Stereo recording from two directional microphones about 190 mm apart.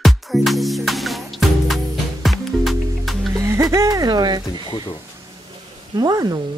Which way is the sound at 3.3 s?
15° right (ahead or behind).